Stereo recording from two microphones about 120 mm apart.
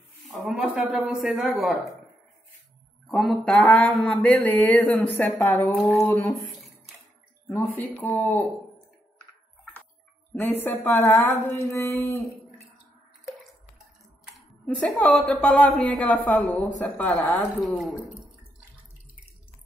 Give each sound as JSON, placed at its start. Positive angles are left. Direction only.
{"t": 0.3, "sound": "a man's voice", "side_deg": 0}
{"t": 3.1, "sound": "a man's voice", "side_deg": 0}
{"t": 6.5, "sound": "a sound", "side_deg": 0}
{"t": 7.4, "sound": "speech", "side_deg": 15}
{"t": 10.4, "sound": "a woman's voice", "side_deg": 15}
{"t": 14.5, "sound": "speech", "side_deg": 5}
{"t": 17.7, "sound": "speech", "side_deg": 0}